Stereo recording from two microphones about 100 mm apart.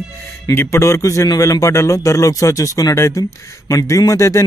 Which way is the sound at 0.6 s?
30° left (ahead or behind).